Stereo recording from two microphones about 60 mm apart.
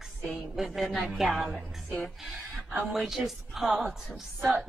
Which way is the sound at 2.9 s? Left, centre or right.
Centre.